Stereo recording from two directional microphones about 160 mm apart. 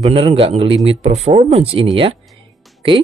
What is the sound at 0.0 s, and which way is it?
Speech, 35° right (ahead or behind).